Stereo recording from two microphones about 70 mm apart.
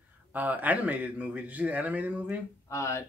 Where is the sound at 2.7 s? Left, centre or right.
Left.